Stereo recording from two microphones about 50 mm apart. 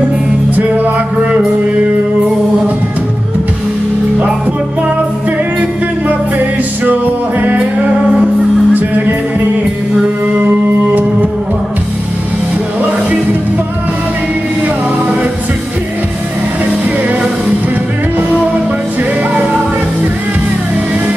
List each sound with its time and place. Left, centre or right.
0.6 s music: right
7.4 s music: right